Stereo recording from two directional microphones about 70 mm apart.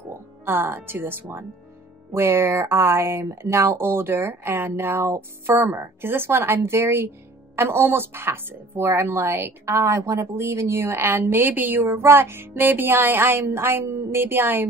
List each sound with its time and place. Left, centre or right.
0.1 s a woman's voice: right